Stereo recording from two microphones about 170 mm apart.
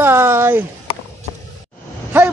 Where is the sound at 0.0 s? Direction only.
15° right (ahead or behind).